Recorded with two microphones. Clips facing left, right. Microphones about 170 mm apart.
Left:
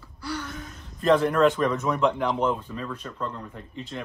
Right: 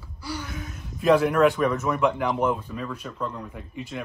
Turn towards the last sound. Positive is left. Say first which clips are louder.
# right 2 dB
turn(degrees=-10)  # may be behind; listen again after turning